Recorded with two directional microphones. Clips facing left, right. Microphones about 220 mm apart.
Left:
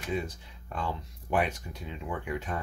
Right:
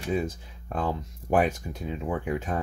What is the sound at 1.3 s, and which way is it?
Speech, 45° right (ahead or behind).